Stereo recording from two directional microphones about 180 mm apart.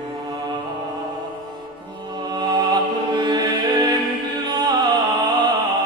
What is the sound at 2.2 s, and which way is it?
Music, 25° right (ahead or behind).